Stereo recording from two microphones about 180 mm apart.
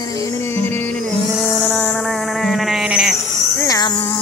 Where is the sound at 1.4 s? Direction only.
5° left (ahead or behind).